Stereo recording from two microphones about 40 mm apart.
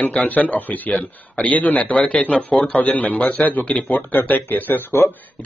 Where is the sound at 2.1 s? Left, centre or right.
Left.